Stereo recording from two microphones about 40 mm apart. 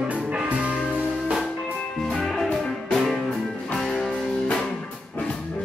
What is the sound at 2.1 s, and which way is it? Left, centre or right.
Music, centre.